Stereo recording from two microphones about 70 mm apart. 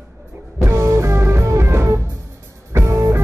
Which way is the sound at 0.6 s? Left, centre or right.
Right.